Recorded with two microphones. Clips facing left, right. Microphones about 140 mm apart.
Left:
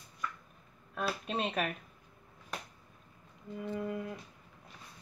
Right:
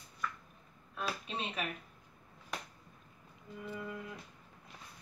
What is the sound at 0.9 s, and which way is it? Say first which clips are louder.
Speech: left 5 dB; 50° left (ahead or behind).